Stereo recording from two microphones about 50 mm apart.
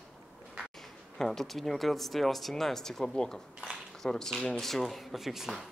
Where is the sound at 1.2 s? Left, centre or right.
Centre.